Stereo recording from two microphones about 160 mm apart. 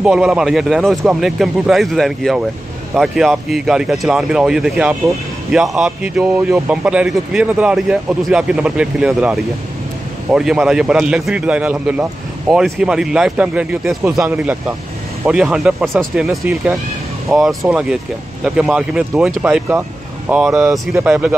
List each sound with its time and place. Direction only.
0.0 s speech: 5° right (ahead or behind)
16.3 s speech: 10° right (ahead or behind)
17.3 s speech: centre (ahead or behind)